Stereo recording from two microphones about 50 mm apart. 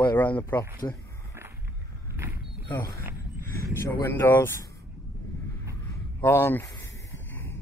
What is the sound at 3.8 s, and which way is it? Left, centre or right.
Speech, left.